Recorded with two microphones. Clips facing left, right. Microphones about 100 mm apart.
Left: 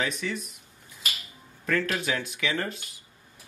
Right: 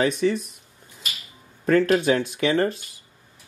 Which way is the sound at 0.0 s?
35° right (ahead or behind).